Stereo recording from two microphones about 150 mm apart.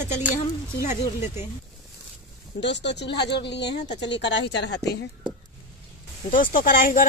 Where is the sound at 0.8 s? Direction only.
45° left (ahead or behind).